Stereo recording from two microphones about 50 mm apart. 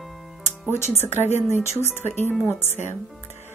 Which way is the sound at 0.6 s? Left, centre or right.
Left.